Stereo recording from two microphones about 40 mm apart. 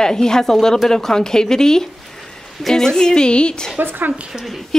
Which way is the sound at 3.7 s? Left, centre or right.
Right.